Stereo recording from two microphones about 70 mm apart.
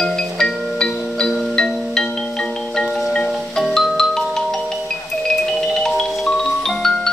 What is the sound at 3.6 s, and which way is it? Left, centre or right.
Marimba, centre.